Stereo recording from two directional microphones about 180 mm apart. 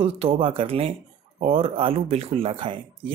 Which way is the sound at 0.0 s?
30° right (ahead or behind).